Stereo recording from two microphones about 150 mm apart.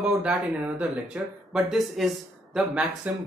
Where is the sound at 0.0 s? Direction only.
5° right (ahead or behind).